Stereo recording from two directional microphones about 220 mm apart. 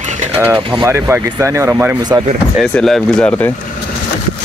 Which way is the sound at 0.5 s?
20° right (ahead or behind).